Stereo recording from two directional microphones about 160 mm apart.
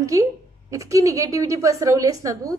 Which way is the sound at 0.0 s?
20° right (ahead or behind).